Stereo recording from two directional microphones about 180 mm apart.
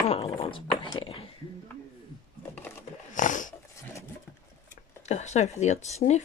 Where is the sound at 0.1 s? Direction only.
30° left (ahead or behind).